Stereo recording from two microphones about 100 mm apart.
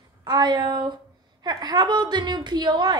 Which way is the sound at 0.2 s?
45° right (ahead or behind).